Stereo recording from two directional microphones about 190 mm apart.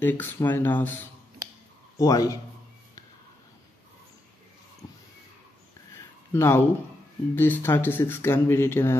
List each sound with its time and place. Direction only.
0.0 s a man's voice: 10° left (ahead or behind)
5.9 s a sound: 15° left (ahead or behind)
7.3 s speech: 10° left (ahead or behind)